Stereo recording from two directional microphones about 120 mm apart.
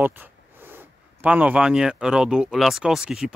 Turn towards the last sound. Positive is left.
turn(degrees=-5)  # may be behind; listen again after turning